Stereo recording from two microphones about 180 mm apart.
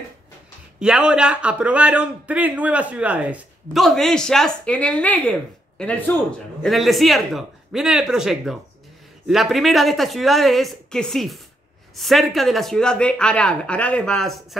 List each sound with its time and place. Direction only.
0.7 s a man's voice: 5° right (ahead or behind)